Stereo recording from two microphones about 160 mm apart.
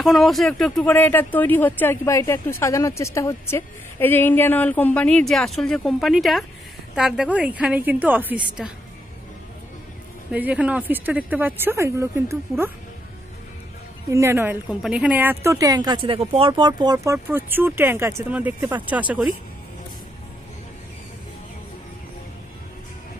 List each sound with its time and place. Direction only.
0.0 s a woman's voice: centre (ahead or behind)
10.3 s speech: 10° right (ahead or behind)
14.1 s speech: 15° right (ahead or behind)